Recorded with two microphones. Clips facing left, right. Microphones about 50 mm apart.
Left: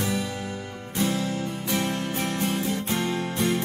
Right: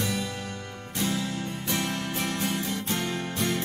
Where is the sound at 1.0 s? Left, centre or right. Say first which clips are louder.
Left 3 dB; left.